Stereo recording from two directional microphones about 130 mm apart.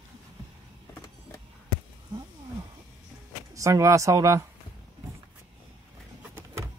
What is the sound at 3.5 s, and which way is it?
Speech, 25° right (ahead or behind).